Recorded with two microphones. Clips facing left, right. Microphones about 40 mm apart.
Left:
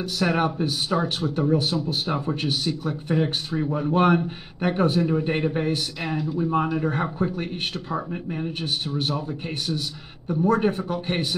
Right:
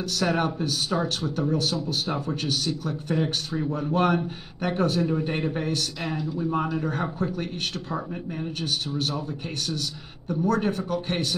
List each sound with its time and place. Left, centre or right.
0.0 s speech: centre
6.1 s a man's voice: centre